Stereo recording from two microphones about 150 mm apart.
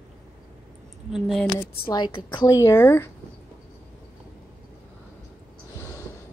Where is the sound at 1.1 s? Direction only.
Centre (ahead or behind).